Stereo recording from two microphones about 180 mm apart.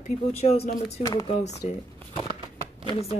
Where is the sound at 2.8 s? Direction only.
35° left (ahead or behind).